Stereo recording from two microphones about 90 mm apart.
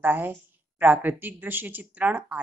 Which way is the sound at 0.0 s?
20° right (ahead or behind).